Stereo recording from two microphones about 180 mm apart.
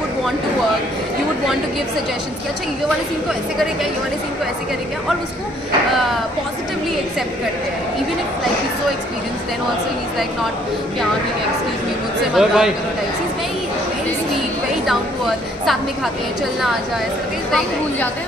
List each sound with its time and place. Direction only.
12.4 s a man's voice: centre (ahead or behind)